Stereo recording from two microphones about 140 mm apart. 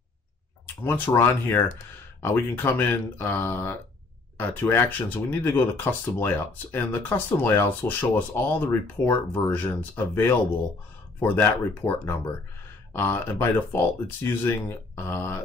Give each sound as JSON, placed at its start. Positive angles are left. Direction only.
{"t": 0.8, "sound": "speech", "side_deg": 15}